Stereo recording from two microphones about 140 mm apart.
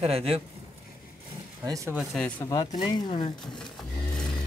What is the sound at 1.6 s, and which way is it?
Speech, 25° right (ahead or behind).